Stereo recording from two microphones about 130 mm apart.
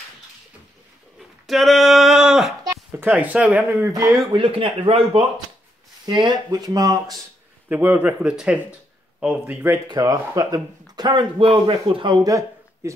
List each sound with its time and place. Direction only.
1.5 s a sound: centre (ahead or behind)
3.0 s speech: 10° right (ahead or behind)
3.9 s speech: 25° right (ahead or behind)
4.3 s speech: 40° right (ahead or behind)
6.0 s speech: 35° right (ahead or behind)
7.7 s speech: 10° right (ahead or behind)
9.8 s speech: 30° right (ahead or behind)